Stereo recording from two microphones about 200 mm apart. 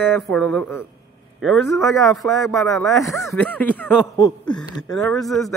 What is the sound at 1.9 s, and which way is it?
Speech, 15° left (ahead or behind).